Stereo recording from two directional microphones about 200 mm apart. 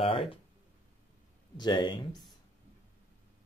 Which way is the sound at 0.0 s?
30° left (ahead or behind).